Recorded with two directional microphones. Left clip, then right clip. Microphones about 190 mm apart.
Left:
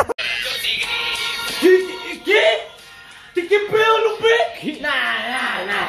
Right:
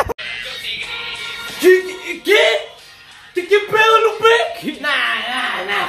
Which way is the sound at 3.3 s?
10° right (ahead or behind).